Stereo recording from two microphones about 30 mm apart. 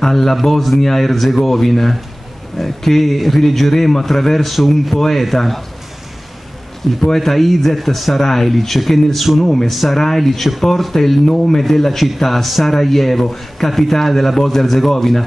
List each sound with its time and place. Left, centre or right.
0.0 s a man's voice: centre
4.5 s a man's voice: centre
6.8 s a man's voice: centre
9.4 s speech: centre
9.7 s a man's voice: centre
9.9 s speech: centre
11.2 s a man's voice: centre